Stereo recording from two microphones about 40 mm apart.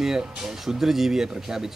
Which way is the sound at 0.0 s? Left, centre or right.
Centre.